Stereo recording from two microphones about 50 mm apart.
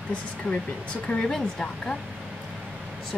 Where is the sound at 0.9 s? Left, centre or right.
Left.